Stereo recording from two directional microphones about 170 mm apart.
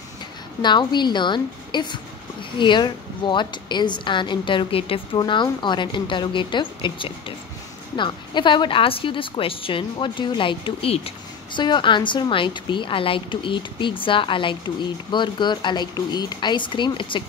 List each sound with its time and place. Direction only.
0.6 s a woman's voice: 25° left (ahead or behind)